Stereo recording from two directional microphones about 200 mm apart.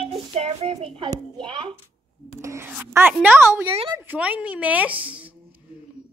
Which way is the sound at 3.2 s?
10° right (ahead or behind).